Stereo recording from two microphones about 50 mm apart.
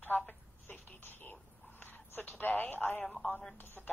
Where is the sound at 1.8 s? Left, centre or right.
Left.